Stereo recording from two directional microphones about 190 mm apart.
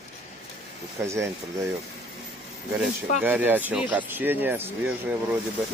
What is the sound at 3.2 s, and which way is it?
Speech, 10° right (ahead or behind).